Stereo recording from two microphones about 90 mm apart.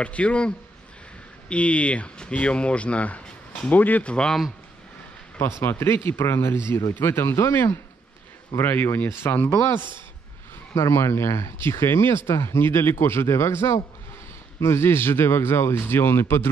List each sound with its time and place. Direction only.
0.0 s speech: 15° left (ahead or behind)
1.5 s speech: 15° left (ahead or behind)
5.6 s speech: 25° left (ahead or behind)
10.7 s speech: 35° left (ahead or behind)